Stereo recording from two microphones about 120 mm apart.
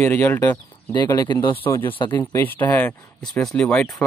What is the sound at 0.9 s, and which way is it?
Speech, 35° left (ahead or behind).